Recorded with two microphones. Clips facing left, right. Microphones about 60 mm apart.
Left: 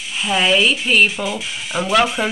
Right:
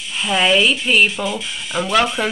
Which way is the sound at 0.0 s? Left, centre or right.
Centre.